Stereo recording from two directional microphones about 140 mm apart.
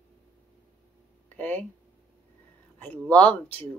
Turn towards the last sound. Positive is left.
turn(degrees=10)  # may be behind; listen again after turning